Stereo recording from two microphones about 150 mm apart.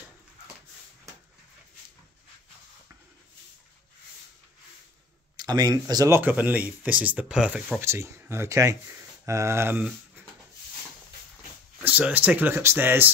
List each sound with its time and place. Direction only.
5.4 s speech: 25° right (ahead or behind); by 7.8 s 5° right (ahead or behind)
7.8 s speech: 15° right (ahead or behind)
11.8 s speech: 10° right (ahead or behind)